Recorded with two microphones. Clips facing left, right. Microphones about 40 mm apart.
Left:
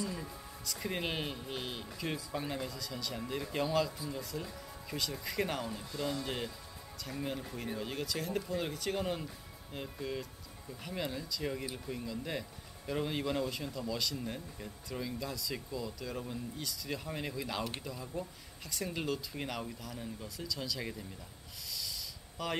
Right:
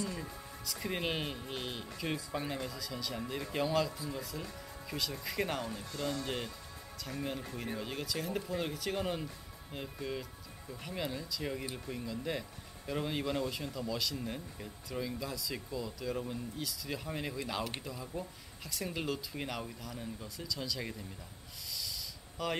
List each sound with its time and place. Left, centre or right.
0.1 s speech: centre
5.9 s speech: centre
6.2 s speech: centre
22.4 s speech: centre